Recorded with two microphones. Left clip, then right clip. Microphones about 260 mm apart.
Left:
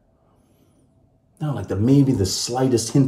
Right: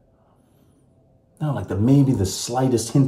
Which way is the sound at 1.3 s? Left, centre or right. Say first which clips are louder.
Even; centre.